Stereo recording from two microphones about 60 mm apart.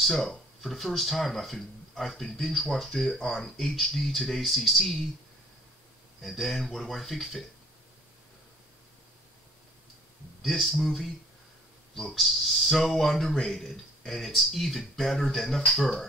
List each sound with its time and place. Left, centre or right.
0.0 s speech: centre
6.2 s speech: centre
10.4 s speech: centre